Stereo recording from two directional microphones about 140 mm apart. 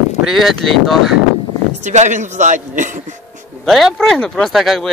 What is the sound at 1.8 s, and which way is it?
A man's voice, 60° right (ahead or behind).